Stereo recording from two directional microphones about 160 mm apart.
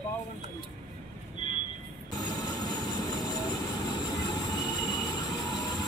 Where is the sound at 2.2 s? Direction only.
25° left (ahead or behind).